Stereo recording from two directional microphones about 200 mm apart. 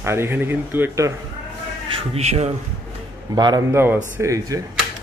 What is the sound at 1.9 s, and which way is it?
Speech, 30° right (ahead or behind).